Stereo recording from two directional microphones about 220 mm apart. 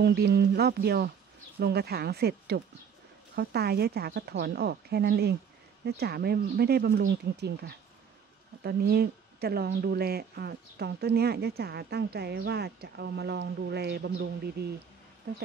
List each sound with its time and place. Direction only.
0.0 s a woman's voice: 45° right (ahead or behind)